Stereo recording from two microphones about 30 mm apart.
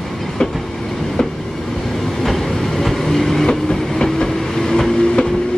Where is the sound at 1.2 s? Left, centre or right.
Left.